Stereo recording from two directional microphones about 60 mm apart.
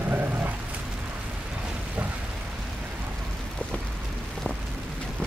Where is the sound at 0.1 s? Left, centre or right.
Right.